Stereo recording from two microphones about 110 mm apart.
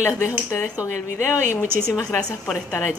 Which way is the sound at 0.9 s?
90° right.